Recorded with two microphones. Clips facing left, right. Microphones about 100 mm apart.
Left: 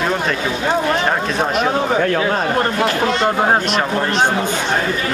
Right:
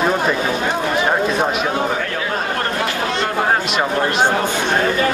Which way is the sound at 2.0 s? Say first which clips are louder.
Left 7 dB; 45° left (ahead or behind).